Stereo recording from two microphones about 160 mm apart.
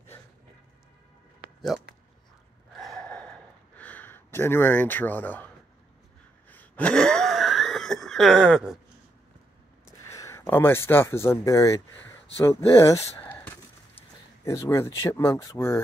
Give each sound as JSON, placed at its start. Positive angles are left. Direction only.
{"t": 2.7, "sound": "gasp", "side_deg": 0}
{"t": 6.5, "sound": "a sound", "side_deg": 10}
{"t": 9.8, "sound": "speech", "side_deg": 20}